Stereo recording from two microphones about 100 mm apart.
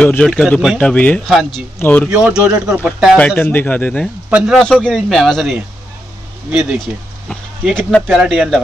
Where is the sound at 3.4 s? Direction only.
20° left (ahead or behind); by 5.5 s centre (ahead or behind).